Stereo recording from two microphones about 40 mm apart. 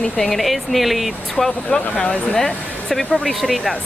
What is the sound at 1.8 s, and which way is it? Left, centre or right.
Speech, left.